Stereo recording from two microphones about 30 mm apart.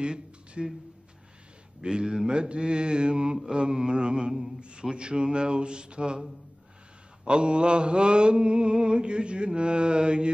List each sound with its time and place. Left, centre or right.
0.0 s a sound: right
1.8 s mantra: right
7.2 s mantra: right